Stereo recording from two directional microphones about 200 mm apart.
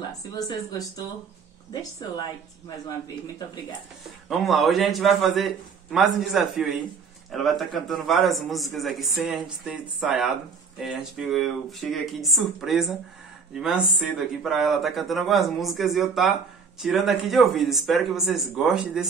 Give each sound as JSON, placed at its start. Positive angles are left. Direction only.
{"t": 0.2, "sound": "speech", "side_deg": 20}
{"t": 4.3, "sound": "speech", "side_deg": 0}